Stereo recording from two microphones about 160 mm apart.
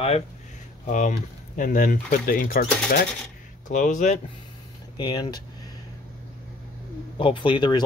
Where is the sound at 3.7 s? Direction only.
50° left (ahead or behind).